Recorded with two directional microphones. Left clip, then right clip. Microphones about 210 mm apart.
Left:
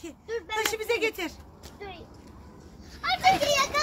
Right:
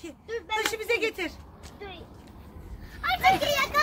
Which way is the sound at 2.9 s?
40° left (ahead or behind).